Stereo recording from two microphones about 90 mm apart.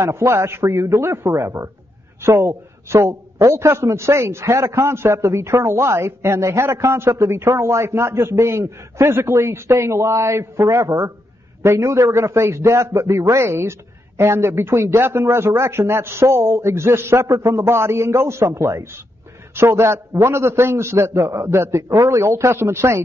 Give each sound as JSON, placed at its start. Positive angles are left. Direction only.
{"t": 0.0, "sound": "a man's voice", "side_deg": -30}